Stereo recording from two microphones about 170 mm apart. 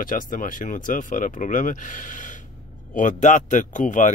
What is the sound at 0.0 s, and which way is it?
A man's voice, 50° left (ahead or behind).